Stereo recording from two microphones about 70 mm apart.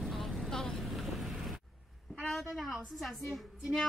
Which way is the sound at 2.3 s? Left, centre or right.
Centre.